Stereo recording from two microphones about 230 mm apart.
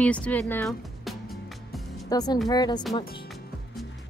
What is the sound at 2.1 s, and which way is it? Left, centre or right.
Speech, centre.